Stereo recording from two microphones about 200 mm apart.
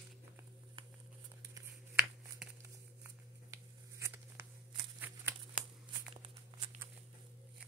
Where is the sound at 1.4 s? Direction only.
15° right (ahead or behind).